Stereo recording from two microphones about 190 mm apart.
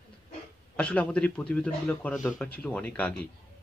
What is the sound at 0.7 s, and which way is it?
Speech, 5° left (ahead or behind).